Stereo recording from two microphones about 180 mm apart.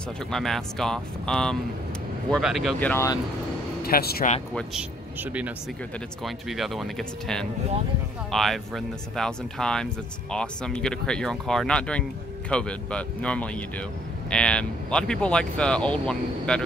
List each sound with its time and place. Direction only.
0.3 s speech: centre (ahead or behind)
2.8 s speech: 15° left (ahead or behind)
3.8 s speech: 60° left (ahead or behind)
5.2 s speech: 10° right (ahead or behind)